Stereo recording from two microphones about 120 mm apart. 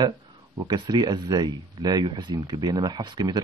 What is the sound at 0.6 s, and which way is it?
Speech, 35° right (ahead or behind).